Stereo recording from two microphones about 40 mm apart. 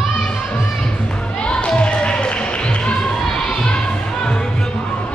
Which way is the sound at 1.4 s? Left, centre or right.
Left.